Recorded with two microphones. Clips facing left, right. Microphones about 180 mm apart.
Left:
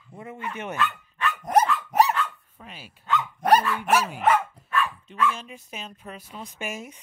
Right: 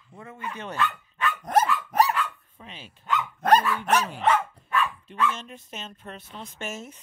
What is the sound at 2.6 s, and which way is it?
Dog, 10° left (ahead or behind).